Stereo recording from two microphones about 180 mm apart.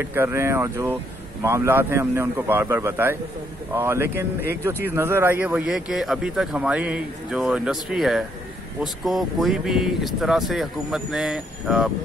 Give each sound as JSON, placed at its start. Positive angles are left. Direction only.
{"t": 0.0, "sound": "a man's voice", "side_deg": -15}